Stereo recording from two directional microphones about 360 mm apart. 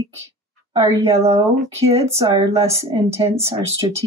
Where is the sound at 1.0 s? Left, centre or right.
Centre.